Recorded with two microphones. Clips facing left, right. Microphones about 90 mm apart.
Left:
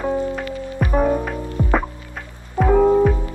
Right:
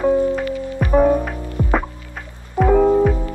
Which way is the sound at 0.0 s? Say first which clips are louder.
Right 5 dB; centre (ahead or behind).